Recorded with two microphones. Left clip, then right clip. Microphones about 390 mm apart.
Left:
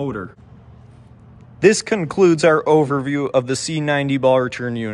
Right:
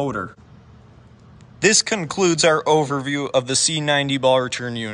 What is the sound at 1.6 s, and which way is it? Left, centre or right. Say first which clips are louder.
Speech: left 2 dB; centre.